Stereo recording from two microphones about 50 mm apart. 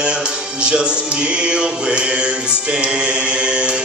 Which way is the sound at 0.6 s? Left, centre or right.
Right.